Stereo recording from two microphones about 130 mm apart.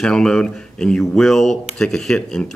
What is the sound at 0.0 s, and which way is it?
Speech, 5° left (ahead or behind).